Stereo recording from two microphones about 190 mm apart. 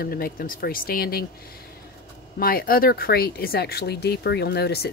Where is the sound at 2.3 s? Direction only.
50° left (ahead or behind).